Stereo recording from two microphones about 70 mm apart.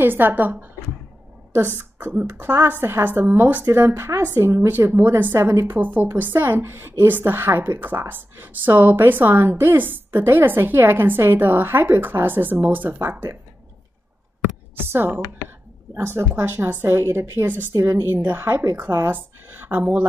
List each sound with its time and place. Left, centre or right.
0.0 s a woman's voice: right
3.6 s speech: right
5.8 s a woman's voice: right
14.8 s speech: right
18.1 s speech: right
19.7 s a woman's voice: right